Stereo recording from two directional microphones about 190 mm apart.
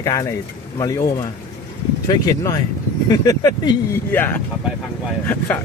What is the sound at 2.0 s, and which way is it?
Speech, 20° left (ahead or behind).